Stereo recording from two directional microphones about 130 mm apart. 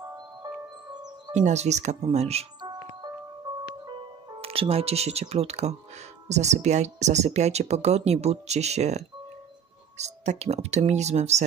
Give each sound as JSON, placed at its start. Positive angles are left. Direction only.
{"t": 1.3, "sound": "speech", "side_deg": -65}
{"t": 4.4, "sound": "speech", "side_deg": -50}